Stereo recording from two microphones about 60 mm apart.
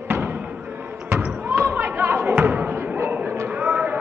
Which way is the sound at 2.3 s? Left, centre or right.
Right.